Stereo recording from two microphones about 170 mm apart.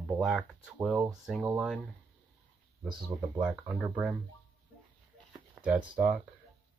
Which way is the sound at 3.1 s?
5° right (ahead or behind).